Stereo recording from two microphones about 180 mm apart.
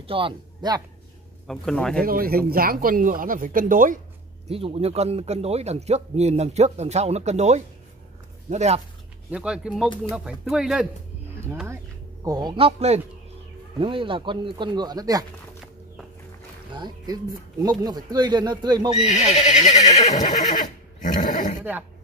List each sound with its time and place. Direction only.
0.0 s a man's voice: 30° right (ahead or behind)
1.5 s speech: 5° left (ahead or behind)
2.0 s speech: 55° right (ahead or behind)
4.5 s a man's voice: 30° right (ahead or behind)
9.3 s speech: 5° right (ahead or behind)
12.3 s a man's voice: 25° right (ahead or behind)
16.7 s speech: 25° right (ahead or behind)
18.9 s speech: 35° left (ahead or behind)
19.4 s neigh: 40° left (ahead or behind)